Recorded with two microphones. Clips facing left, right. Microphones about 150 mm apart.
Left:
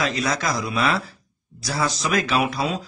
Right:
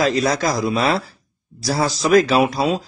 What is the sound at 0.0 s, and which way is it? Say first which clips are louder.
Speech: right 6 dB; 35° right (ahead or behind).